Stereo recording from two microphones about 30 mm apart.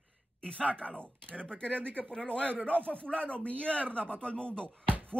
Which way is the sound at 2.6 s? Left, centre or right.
Left.